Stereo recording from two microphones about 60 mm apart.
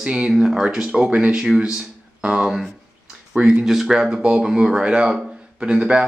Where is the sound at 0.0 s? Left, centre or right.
Centre.